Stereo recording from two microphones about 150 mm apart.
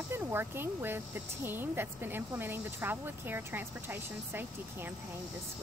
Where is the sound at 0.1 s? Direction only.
15° right (ahead or behind).